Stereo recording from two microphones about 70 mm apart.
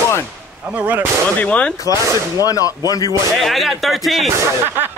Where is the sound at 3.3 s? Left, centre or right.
Centre.